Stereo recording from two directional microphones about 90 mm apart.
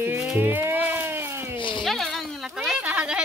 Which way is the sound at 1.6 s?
65° left (ahead or behind).